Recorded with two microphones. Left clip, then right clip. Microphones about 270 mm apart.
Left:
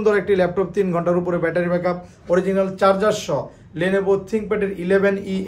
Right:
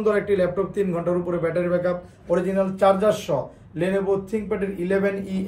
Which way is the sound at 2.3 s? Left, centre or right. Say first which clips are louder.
Left 3 dB; centre.